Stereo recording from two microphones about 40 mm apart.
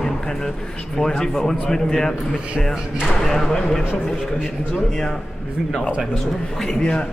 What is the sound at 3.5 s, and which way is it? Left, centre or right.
A man's voice, centre.